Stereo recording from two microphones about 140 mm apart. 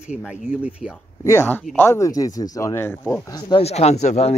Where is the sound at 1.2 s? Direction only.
15° left (ahead or behind).